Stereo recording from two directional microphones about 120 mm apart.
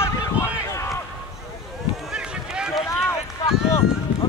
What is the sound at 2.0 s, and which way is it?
Run, 5° right (ahead or behind).